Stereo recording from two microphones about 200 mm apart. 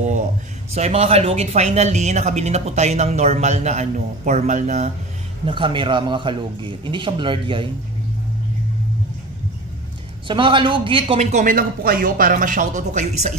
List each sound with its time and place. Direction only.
0.0 s a sound: 40° right (ahead or behind)
0.7 s speech: 30° right (ahead or behind)
5.4 s a man's voice: 25° right (ahead or behind)
10.2 s a man's voice: 25° right (ahead or behind)
11.3 s speech: 45° right (ahead or behind)